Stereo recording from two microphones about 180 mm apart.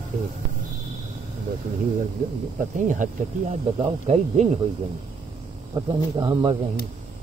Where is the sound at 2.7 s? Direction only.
45° right (ahead or behind).